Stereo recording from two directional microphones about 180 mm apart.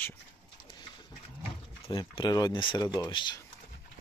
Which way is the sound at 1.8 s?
25° left (ahead or behind).